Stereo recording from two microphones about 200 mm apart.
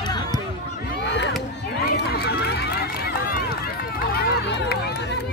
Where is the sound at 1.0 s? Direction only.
60° left (ahead or behind).